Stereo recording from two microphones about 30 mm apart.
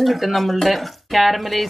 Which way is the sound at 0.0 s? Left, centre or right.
Centre.